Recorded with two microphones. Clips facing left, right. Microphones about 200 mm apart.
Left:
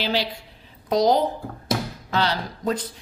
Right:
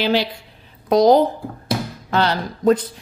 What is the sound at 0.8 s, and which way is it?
A woman's voice, 55° right (ahead or behind).